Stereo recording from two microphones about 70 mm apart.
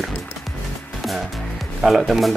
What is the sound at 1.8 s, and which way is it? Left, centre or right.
Speech, centre.